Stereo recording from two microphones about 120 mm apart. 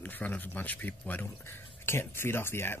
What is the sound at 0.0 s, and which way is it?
Speech, 15° left (ahead or behind).